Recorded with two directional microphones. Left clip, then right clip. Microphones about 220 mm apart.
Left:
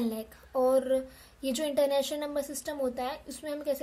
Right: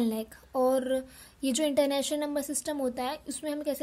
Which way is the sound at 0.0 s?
30° right (ahead or behind).